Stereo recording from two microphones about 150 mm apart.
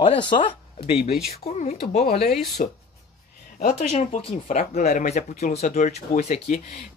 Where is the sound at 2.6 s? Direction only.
60° left (ahead or behind).